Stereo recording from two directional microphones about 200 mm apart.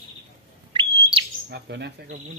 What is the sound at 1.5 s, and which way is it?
Chirp, 55° right (ahead or behind).